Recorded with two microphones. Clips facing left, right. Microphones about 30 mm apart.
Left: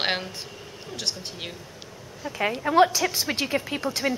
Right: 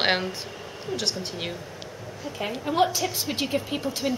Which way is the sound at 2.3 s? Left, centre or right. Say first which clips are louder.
Left 4 dB; left.